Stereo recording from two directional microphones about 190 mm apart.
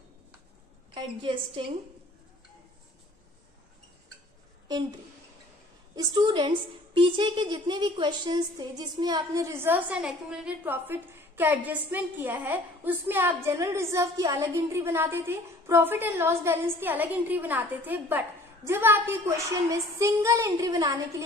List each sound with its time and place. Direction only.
0.9 s a woman's voice: 25° right (ahead or behind)
5.9 s a woman's voice: 20° right (ahead or behind)